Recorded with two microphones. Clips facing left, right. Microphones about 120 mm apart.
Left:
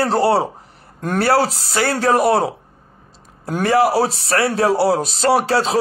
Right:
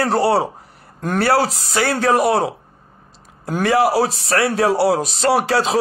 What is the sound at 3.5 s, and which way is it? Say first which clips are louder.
Speech: even; 35° left (ahead or behind).